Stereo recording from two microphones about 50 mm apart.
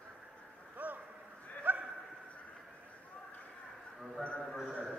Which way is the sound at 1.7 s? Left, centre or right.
Right.